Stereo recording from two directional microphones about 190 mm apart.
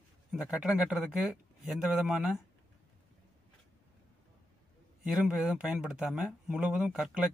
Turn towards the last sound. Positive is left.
turn(degrees=-5)  # may be behind; listen again after turning